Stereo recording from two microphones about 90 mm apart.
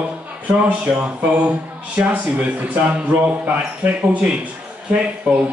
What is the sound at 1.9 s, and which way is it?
A man's voice, 15° right (ahead or behind).